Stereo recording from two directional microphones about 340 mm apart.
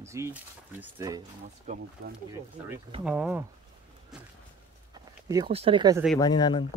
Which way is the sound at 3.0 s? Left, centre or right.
Centre.